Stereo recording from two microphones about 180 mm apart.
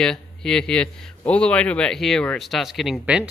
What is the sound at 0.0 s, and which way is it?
Speech, 5° left (ahead or behind).